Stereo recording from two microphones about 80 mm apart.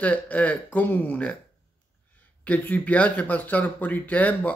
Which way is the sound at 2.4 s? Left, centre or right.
Centre.